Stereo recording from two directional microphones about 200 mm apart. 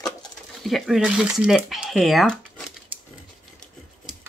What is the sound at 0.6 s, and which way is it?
Speech, centre (ahead or behind).